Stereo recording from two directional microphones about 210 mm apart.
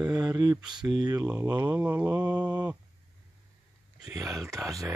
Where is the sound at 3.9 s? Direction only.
15° right (ahead or behind).